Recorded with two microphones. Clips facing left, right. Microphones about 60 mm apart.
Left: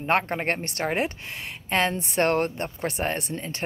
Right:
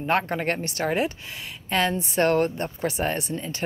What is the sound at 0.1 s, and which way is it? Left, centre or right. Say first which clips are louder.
A woman's voice: even; left.